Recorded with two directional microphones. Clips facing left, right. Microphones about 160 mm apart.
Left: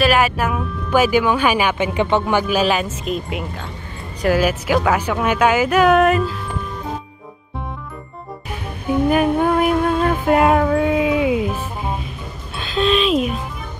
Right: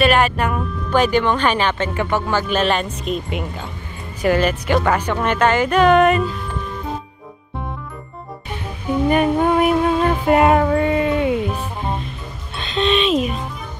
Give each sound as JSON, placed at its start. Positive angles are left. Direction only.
{"t": 0.0, "sound": "speech", "side_deg": 5}
{"t": 2.4, "sound": "a woman's voice", "side_deg": 5}
{"t": 8.5, "sound": "music", "side_deg": 0}
{"t": 12.5, "sound": "speech", "side_deg": 0}